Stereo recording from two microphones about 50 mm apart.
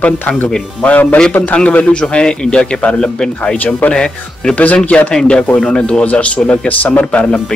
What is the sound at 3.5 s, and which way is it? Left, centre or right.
Speech, left.